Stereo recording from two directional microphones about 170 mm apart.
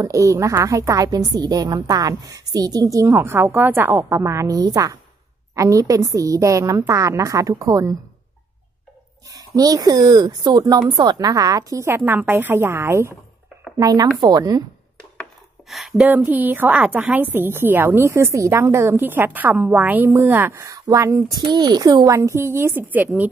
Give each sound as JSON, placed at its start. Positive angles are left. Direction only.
{"t": 0.0, "sound": "a woman's voice", "side_deg": -20}
{"t": 9.6, "sound": "a woman's voice", "side_deg": -20}
{"t": 15.7, "sound": "a woman's voice", "side_deg": -5}